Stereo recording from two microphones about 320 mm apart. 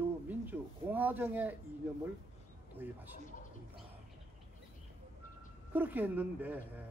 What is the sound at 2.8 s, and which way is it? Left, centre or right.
Speech, centre.